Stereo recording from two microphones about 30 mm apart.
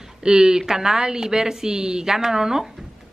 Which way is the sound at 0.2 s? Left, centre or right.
Right.